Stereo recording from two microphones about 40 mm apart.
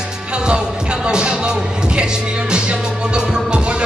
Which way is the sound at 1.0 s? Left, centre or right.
Right.